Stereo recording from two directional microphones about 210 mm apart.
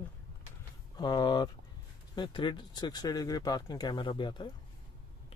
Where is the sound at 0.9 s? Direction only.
20° left (ahead or behind).